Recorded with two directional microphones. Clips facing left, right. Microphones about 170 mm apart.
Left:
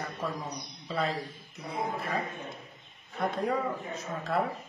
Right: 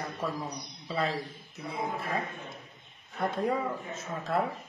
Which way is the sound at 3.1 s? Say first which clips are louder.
Even; centre (ahead or behind).